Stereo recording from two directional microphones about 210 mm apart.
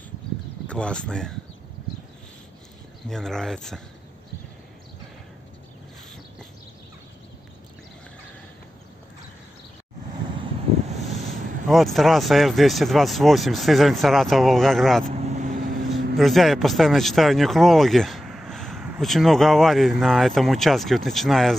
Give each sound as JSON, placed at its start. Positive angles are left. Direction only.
{"t": 0.7, "sound": "speech", "side_deg": 5}
{"t": 3.1, "sound": "speech", "side_deg": 0}
{"t": 11.6, "sound": "speech", "side_deg": 0}
{"t": 15.0, "sound": "vehicle", "side_deg": -35}
{"t": 16.2, "sound": "speech", "side_deg": 0}